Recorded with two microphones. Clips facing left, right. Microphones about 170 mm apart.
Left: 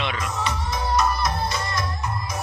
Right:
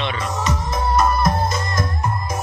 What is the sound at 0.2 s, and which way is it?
Music, 40° right (ahead or behind).